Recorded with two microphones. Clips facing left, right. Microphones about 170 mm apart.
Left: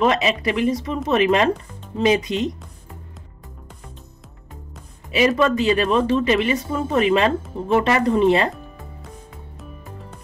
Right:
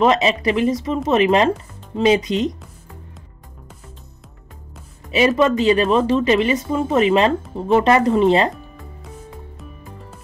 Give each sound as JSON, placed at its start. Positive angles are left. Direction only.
{"t": 0.0, "sound": "speech", "side_deg": -25}
{"t": 5.1, "sound": "speech", "side_deg": -20}
{"t": 6.7, "sound": "speech", "side_deg": -10}
{"t": 7.0, "sound": "speech", "side_deg": -25}